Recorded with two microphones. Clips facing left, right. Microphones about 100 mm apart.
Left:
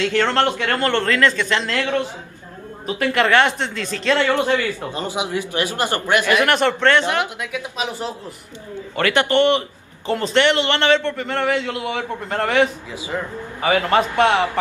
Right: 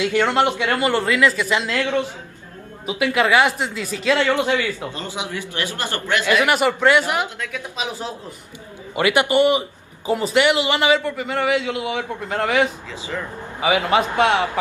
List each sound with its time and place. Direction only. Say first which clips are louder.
0.0 s speech: even; 10° right (ahead or behind)
4.8 s speech: left 4 dB; 15° left (ahead or behind)
6.4 s speech: even; 10° right (ahead or behind)
7.5 s speech: left 3 dB; centre (ahead or behind)
8.9 s speech: even; 15° right (ahead or behind)
13.1 s speech: left 3 dB; 25° left (ahead or behind)
13.6 s speech: left 1 dB; 10° right (ahead or behind)